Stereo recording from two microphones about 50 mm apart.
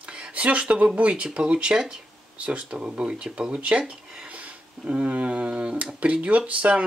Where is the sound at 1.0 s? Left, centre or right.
Right.